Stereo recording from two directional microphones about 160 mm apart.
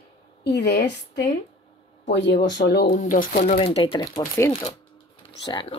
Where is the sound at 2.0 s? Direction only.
90° left.